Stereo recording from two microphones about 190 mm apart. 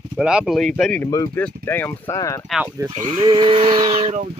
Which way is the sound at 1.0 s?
15° left (ahead or behind).